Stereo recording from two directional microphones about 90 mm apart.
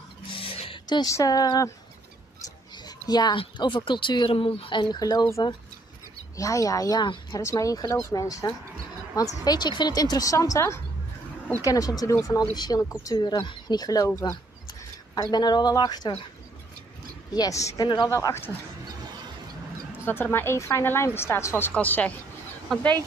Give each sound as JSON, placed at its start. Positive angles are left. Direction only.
{"t": 0.3, "sound": "a sound", "side_deg": 85}
{"t": 1.0, "sound": "speech", "side_deg": 40}
{"t": 2.8, "sound": "a sound", "side_deg": 50}
{"t": 3.3, "sound": "speech", "side_deg": 60}
{"t": 6.3, "sound": "speech", "side_deg": 40}
{"t": 17.3, "sound": "speech", "side_deg": 40}
{"t": 17.8, "sound": "speech", "side_deg": 50}
{"t": 18.1, "sound": "speech", "side_deg": 30}
{"t": 20.1, "sound": "a woman's voice", "side_deg": 25}
{"t": 21.7, "sound": "speech", "side_deg": 15}